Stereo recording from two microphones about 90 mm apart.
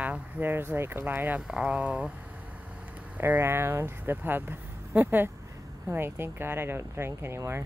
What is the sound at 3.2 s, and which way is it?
Speech, 25° right (ahead or behind).